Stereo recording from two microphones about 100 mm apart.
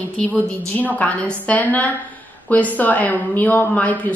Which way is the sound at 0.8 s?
15° left (ahead or behind).